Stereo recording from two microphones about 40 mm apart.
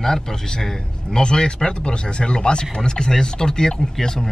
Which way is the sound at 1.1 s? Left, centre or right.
Centre.